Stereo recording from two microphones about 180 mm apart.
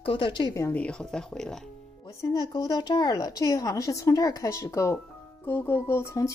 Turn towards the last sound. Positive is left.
turn(degrees=15)  # may be behind; listen again after turning